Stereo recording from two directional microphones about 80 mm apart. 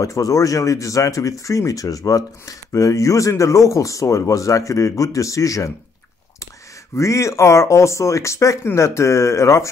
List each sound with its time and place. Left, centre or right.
0.0 s speech: left
7.0 s speech: left